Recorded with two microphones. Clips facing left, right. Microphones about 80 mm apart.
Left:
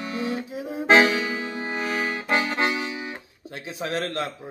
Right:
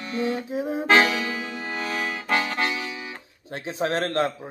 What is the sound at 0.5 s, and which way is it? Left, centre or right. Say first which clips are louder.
Music: right 4 dB; right.